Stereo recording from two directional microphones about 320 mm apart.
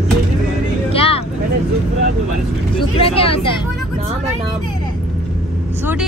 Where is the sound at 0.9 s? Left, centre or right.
Centre.